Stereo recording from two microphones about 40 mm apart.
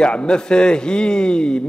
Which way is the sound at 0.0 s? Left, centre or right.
Left.